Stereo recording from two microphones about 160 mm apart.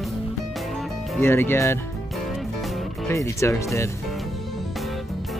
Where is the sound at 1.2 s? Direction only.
15° left (ahead or behind).